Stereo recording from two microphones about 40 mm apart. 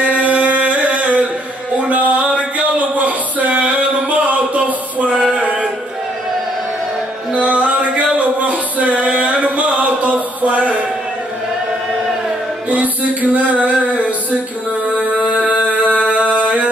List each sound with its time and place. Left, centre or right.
0.0 s music: right
1.9 s a sound: right
5.3 s music: right
7.3 s music: right
12.6 s music: right
15.0 s music: right